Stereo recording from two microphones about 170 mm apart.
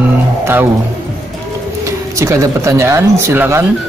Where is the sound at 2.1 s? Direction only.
15° right (ahead or behind).